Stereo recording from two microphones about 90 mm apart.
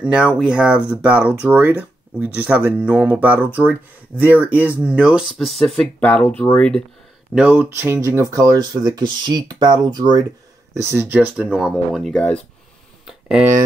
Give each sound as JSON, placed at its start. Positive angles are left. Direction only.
{"t": 0.0, "sound": "speech", "side_deg": -10}
{"t": 5.3, "sound": "speech", "side_deg": 0}
{"t": 5.9, "sound": "speech", "side_deg": 15}
{"t": 7.3, "sound": "speech", "side_deg": -10}
{"t": 7.7, "sound": "speech", "side_deg": -25}
{"t": 10.7, "sound": "speech", "side_deg": -30}
{"t": 11.1, "sound": "speech", "side_deg": -15}
{"t": 11.5, "sound": "speech", "side_deg": -5}